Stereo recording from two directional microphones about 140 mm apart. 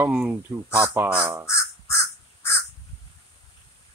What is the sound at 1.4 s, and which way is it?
Crow, 20° left (ahead or behind).